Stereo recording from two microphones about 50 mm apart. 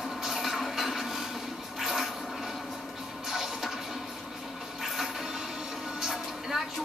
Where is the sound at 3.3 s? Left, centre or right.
Centre.